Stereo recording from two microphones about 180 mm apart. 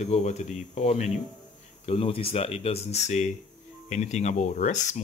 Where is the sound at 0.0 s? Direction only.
40° left (ahead or behind).